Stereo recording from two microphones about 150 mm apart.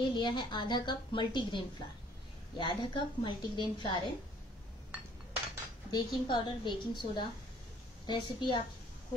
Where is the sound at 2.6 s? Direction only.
30° left (ahead or behind).